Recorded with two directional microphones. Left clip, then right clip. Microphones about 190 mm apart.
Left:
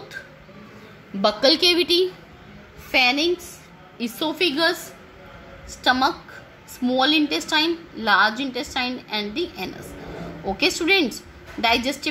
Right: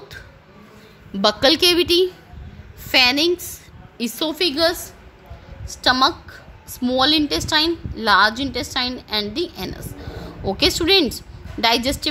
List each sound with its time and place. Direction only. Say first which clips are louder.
1.2 s a woman's voice: right 2 dB; 40° right (ahead or behind)
2.9 s a woman's voice: right 3 dB; 55° right (ahead or behind)